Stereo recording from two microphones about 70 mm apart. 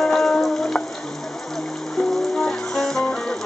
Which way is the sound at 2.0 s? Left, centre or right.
Centre.